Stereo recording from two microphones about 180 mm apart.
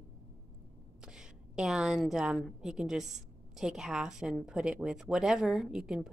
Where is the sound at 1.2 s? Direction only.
5° right (ahead or behind).